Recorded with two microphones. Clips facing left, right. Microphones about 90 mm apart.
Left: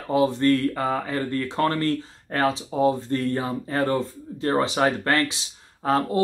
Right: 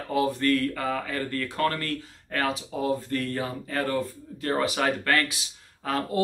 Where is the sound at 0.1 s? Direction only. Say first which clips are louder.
Left 4 dB; 25° left (ahead or behind).